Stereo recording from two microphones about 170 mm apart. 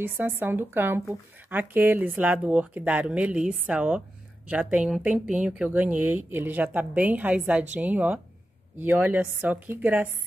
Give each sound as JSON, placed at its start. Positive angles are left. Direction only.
{"t": 0.0, "sound": "speech", "side_deg": -10}